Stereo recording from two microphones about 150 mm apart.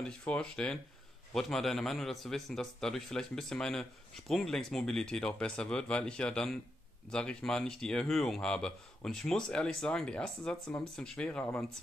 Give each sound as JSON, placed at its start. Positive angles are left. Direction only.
{"t": 0.0, "sound": "a man's voice", "side_deg": 5}